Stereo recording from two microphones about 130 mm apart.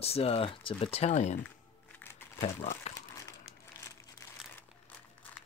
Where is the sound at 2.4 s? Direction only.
60° left (ahead or behind).